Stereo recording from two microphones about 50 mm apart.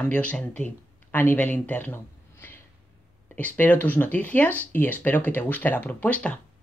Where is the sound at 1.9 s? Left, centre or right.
Left.